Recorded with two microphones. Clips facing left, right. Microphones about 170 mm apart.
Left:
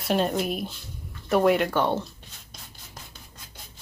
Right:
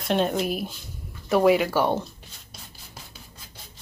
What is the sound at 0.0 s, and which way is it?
Speech, centre (ahead or behind).